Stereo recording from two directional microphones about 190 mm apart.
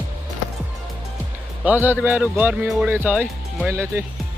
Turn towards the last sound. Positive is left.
turn(degrees=-15)  # may be behind; listen again after turning